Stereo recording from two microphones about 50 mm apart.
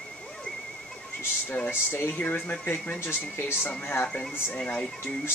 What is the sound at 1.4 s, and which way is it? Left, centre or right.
Speech, left.